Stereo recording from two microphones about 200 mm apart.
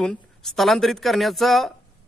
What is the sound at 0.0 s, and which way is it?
A man's voice, 5° left (ahead or behind).